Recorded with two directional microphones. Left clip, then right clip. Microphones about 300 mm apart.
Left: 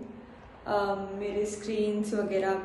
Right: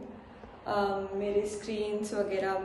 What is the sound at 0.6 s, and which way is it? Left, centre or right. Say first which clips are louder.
A woman's voice: left 1 dB; centre.